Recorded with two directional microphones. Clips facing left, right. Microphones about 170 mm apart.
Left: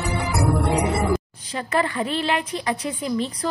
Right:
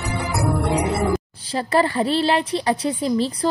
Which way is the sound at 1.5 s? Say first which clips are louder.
Right 4 dB; 30° right (ahead or behind).